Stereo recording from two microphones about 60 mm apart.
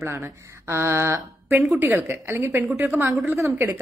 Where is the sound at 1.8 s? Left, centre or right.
Right.